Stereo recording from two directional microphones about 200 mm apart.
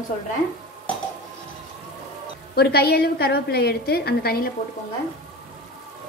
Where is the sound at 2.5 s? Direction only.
50° left (ahead or behind).